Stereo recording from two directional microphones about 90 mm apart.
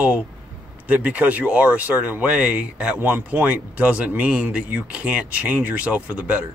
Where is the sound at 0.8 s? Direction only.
15° right (ahead or behind).